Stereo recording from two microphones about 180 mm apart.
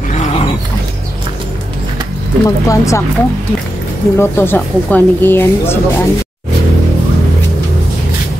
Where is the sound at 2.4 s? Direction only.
15° left (ahead or behind).